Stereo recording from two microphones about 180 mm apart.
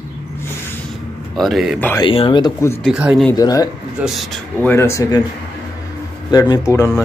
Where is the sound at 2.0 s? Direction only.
30° left (ahead or behind).